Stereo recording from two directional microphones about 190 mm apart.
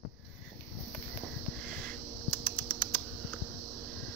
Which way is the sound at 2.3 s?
Centre (ahead or behind).